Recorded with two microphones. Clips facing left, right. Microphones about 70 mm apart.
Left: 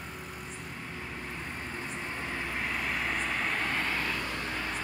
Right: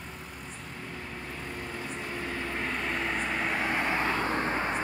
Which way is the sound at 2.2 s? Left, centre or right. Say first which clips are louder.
Right 1 dB; centre.